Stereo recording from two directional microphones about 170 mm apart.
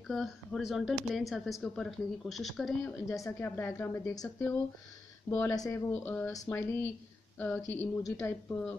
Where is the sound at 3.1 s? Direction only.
15° left (ahead or behind).